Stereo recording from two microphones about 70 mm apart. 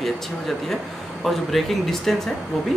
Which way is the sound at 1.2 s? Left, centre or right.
Centre.